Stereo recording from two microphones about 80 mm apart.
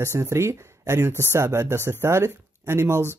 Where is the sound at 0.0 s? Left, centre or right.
Right.